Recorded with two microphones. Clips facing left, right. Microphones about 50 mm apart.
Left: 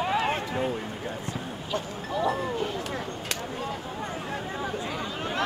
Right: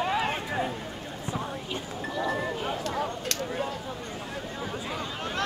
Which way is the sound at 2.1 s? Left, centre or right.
Centre.